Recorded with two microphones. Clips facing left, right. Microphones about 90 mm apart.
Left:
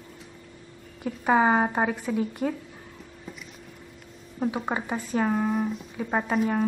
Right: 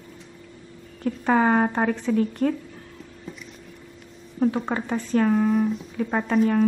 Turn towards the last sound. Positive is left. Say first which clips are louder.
# right 4 dB
turn(degrees=10)  # may be behind; listen again after turning